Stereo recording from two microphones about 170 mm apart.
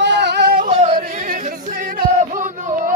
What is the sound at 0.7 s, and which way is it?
Yodeling, 40° right (ahead or behind).